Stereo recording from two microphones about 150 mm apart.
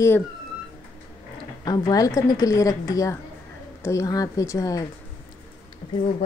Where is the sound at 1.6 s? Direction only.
25° left (ahead or behind).